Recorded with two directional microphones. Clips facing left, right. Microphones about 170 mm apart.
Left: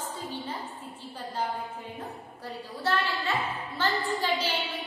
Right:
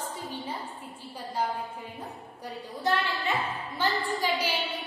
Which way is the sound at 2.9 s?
15° right (ahead or behind).